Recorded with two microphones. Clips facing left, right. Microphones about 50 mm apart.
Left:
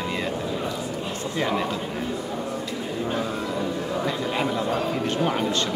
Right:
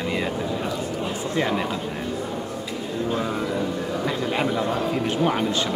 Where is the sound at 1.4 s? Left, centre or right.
Centre.